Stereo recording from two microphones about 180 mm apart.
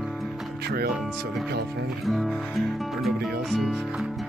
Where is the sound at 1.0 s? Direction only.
Centre (ahead or behind).